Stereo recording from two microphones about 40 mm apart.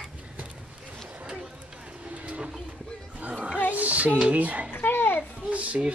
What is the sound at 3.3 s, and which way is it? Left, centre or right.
Music, right.